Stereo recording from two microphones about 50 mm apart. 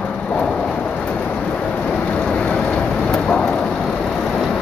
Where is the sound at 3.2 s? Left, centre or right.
Centre.